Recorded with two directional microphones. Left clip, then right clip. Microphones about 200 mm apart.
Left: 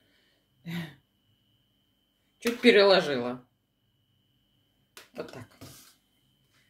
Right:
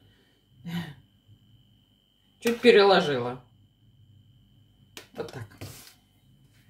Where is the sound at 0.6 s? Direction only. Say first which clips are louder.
Right 1 dB; 30° left (ahead or behind).